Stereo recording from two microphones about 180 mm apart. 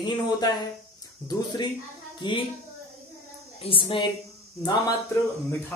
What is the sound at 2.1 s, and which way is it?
Speech, 25° left (ahead or behind).